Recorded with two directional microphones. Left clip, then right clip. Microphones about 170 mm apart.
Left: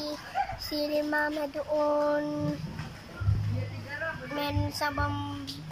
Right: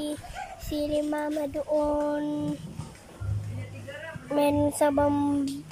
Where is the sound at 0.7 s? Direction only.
25° right (ahead or behind).